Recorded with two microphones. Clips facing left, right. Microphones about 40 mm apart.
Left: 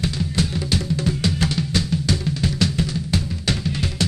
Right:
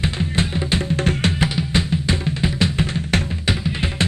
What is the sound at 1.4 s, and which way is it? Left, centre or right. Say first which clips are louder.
Drum: right 2 dB; right.